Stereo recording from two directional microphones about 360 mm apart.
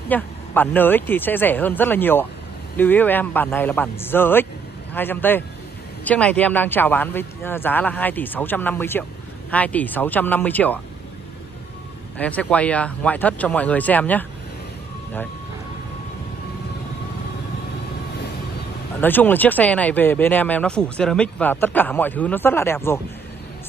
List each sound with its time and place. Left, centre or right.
0.1 s speech: centre
12.2 s speech: centre
18.9 s speech: centre